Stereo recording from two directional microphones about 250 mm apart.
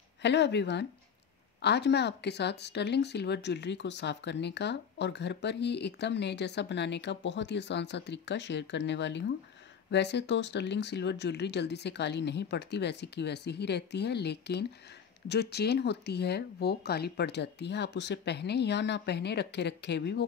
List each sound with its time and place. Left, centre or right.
0.2 s speech: left